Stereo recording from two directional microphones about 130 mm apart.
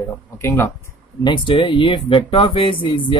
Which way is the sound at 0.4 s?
20° left (ahead or behind).